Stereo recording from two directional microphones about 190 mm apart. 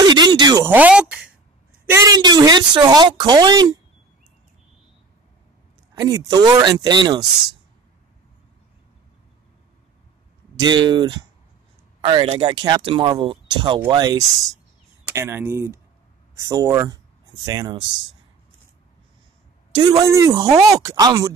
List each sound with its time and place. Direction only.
0.0 s a sound: 20° right (ahead or behind)
0.7 s a sound: 10° right (ahead or behind)
1.9 s speech: 20° right (ahead or behind)
5.9 s speech: 20° right (ahead or behind)
10.6 s speech: 25° right (ahead or behind)
19.7 s speech: 20° right (ahead or behind)